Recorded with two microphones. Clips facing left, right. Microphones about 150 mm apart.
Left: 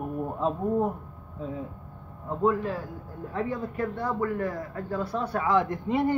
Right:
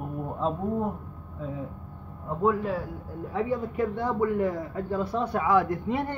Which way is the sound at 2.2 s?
5° right (ahead or behind).